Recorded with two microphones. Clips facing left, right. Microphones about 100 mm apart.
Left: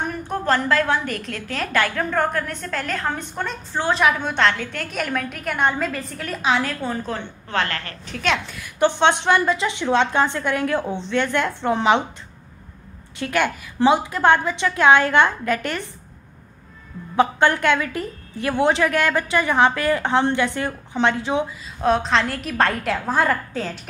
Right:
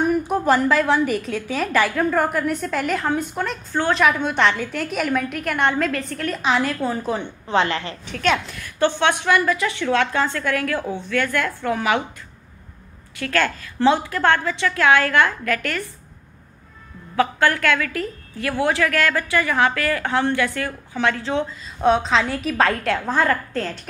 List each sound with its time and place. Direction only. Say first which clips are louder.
0.1 s a woman's voice: right 4 dB; 10° right (ahead or behind)
8.1 s a woman's voice: right 2 dB; centre (ahead or behind)
8.7 s a woman's voice: left 2 dB; 15° left (ahead or behind)
13.2 s a woman's voice: even; 15° left (ahead or behind)
17.1 s a woman's voice: left 1 dB; 20° left (ahead or behind)
21.8 s a woman's voice: right 1 dB; centre (ahead or behind)